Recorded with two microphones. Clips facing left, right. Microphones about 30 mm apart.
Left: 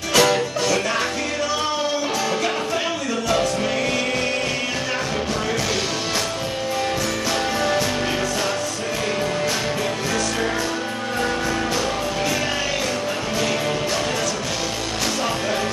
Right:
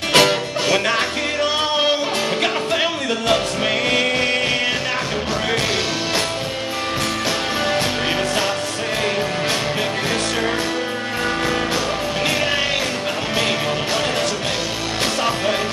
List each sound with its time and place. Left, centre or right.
0.1 s music: right
1.4 s music: right